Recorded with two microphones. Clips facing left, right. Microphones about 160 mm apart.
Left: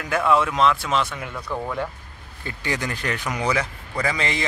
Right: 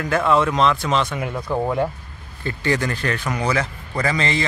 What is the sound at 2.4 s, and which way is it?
A man's voice, 15° left (ahead or behind).